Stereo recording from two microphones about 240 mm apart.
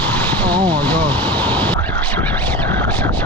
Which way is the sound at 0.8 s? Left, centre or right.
Centre.